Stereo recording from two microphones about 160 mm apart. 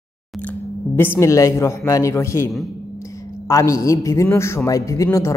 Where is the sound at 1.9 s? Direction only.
20° left (ahead or behind).